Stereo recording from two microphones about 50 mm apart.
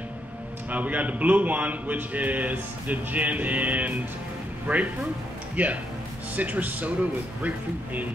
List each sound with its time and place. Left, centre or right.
0.7 s a man's voice: right